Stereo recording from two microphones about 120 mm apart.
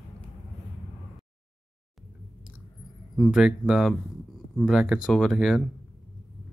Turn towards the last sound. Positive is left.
turn(degrees=0)  # may be behind; listen again after turning